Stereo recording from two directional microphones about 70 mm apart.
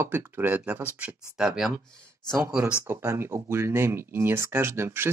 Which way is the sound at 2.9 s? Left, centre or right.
Right.